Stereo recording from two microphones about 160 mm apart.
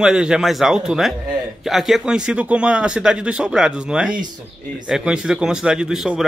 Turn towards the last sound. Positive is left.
turn(degrees=0)  # may be behind; listen again after turning